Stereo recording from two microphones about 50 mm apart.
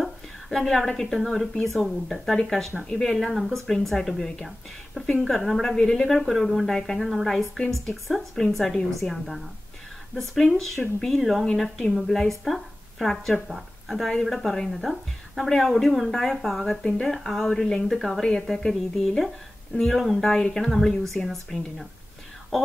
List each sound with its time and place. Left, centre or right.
0.0 s a woman's voice: centre